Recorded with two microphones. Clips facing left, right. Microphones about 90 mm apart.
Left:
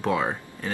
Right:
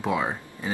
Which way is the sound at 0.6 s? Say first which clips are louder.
Right 1 dB; 15° right (ahead or behind).